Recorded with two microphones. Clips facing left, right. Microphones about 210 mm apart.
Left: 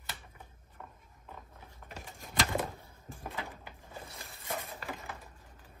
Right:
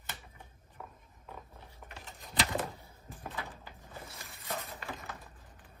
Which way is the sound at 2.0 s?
45° left (ahead or behind).